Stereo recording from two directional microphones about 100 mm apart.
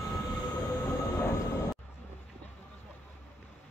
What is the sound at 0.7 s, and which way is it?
Train, 25° left (ahead or behind).